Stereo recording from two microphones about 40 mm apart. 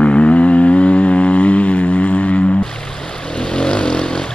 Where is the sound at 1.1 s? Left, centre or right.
Left.